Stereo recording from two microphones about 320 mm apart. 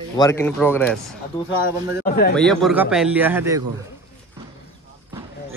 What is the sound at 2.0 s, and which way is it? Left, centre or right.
Speech, left.